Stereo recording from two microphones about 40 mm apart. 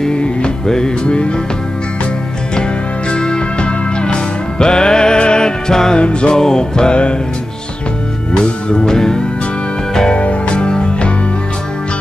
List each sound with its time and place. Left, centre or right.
0.1 s music: left
3.1 s music: left
5.9 s music: left
8.3 s music: left
10.1 s music: left